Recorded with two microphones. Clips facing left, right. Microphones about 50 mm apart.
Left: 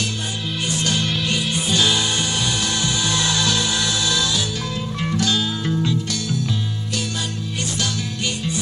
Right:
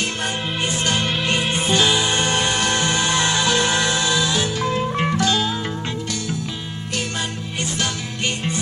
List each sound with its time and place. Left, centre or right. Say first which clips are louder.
0.7 s music: even; right
2.1 s music: right 3 dB; right
5.6 s music: left 4 dB; right